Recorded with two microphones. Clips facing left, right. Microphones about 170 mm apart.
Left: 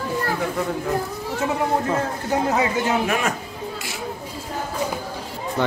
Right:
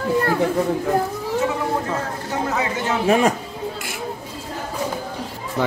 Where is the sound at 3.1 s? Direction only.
30° right (ahead or behind).